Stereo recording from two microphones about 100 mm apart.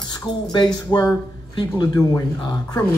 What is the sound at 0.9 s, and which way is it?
Speech, 25° left (ahead or behind).